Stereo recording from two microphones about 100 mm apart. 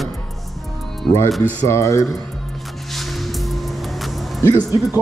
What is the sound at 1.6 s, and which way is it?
Speech, 30° left (ahead or behind).